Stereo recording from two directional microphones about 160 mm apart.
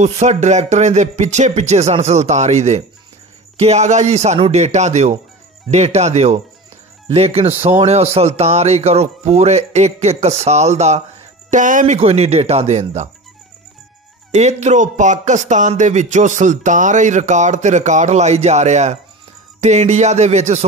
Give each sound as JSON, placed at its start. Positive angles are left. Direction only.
{"t": 0.0, "sound": "speech", "side_deg": -45}
{"t": 12.0, "sound": "speech", "side_deg": -40}
{"t": 14.3, "sound": "speech", "side_deg": -45}